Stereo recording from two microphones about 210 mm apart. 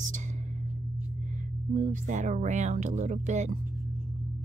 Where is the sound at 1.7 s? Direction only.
35° right (ahead or behind).